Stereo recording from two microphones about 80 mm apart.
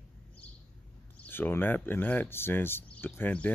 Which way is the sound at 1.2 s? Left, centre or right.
Left.